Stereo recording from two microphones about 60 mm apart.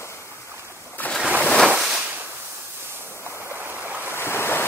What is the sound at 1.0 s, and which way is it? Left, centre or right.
Ocean, left.